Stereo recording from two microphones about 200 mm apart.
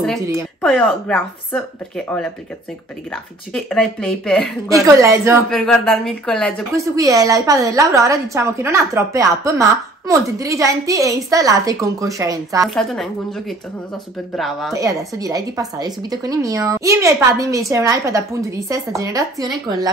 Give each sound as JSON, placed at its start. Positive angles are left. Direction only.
{"t": 0.0, "sound": "speech", "side_deg": 0}
{"t": 3.5, "sound": "speech", "side_deg": 0}
{"t": 4.8, "sound": "a woman's voice", "side_deg": -15}
{"t": 5.5, "sound": "speech", "side_deg": 0}
{"t": 7.0, "sound": "a woman's voice", "side_deg": -15}
{"t": 12.6, "sound": "speech", "side_deg": 0}
{"t": 14.7, "sound": "a woman's voice", "side_deg": -15}